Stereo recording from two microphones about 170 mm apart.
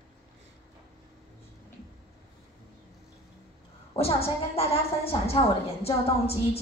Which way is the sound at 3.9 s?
35° left (ahead or behind).